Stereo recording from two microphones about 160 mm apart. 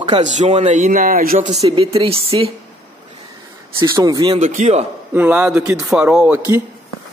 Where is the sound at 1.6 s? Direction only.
35° right (ahead or behind).